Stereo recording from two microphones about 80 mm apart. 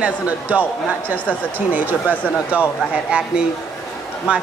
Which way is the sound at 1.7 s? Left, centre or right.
Right.